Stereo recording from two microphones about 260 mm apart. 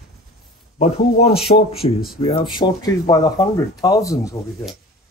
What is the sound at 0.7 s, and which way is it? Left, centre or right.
A man's voice, left.